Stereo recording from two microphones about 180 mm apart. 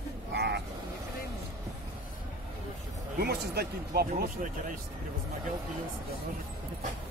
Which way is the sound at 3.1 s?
65° right (ahead or behind).